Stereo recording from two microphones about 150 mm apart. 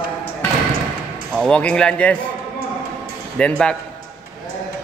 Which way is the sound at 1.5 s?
5° left (ahead or behind).